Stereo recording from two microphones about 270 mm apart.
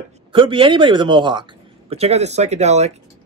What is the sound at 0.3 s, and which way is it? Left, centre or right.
Speech, centre.